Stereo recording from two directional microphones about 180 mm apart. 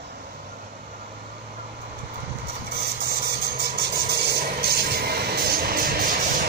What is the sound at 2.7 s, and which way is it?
Vehicle, 60° right (ahead or behind).